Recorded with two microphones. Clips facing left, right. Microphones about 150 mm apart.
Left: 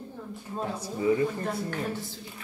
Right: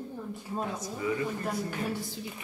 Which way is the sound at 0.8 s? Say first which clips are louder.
Left 6 dB; 30° left (ahead or behind).